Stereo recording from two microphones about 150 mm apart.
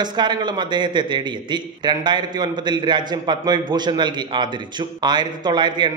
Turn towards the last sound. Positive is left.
turn(degrees=-30)  # may be behind; listen again after turning